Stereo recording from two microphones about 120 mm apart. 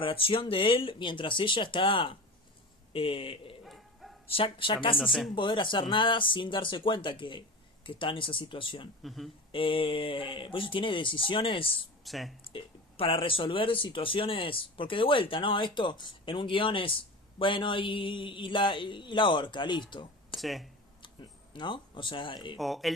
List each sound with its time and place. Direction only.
0.0 s speech: 50° left (ahead or behind)
3.6 s bow-wow: centre (ahead or behind)
4.3 s speech: 45° left (ahead or behind)
4.9 s speech: 5° right (ahead or behind)
5.3 s speech: 40° left (ahead or behind)
9.0 s speech: centre (ahead or behind)
9.5 s speech: 45° left (ahead or behind)
12.0 s speech: centre (ahead or behind)
12.5 s speech: 50° left (ahead or behind)
19.9 s a sound: 40° left (ahead or behind)
20.3 s speech: centre (ahead or behind)
21.0 s speech: 40° left (ahead or behind)
22.6 s speech: centre (ahead or behind)